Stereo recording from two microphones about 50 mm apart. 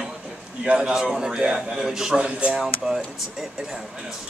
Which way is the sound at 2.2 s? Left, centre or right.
Right.